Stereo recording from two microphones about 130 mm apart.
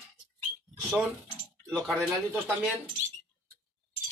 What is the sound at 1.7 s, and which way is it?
Speech, 5° left (ahead or behind).